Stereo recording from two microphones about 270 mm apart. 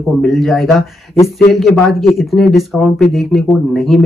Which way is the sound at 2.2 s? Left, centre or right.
Centre.